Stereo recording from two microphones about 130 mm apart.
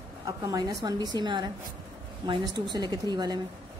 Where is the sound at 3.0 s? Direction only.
30° right (ahead or behind).